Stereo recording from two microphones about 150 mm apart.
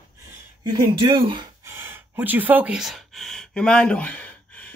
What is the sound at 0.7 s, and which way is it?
Speech, 30° right (ahead or behind).